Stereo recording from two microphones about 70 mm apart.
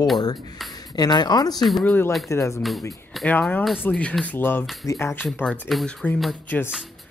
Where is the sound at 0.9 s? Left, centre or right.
Left.